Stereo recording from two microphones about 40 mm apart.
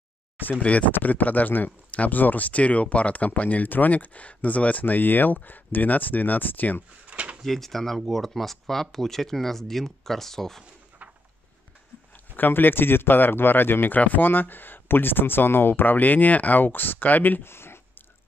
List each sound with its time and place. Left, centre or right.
0.5 s speech: left
7.1 s drawer open or close: right
7.4 s speech: centre
12.4 s speech: left
13.9 s speech: left
17.4 s a sound: left